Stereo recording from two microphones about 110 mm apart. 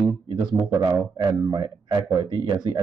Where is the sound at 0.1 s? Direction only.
45° right (ahead or behind).